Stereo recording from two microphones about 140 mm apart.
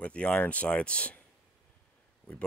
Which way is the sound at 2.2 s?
10° left (ahead or behind).